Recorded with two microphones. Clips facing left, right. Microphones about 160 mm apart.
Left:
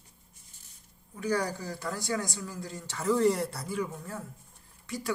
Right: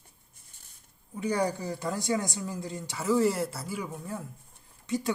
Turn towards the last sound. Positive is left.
turn(degrees=-25)  # may be behind; listen again after turning